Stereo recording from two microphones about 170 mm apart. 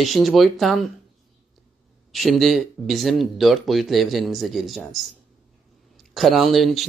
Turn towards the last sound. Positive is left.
turn(degrees=0)  # may be behind; listen again after turning